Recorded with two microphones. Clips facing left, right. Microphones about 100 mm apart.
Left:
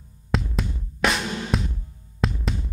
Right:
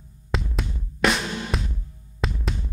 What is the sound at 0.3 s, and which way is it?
Music, centre (ahead or behind).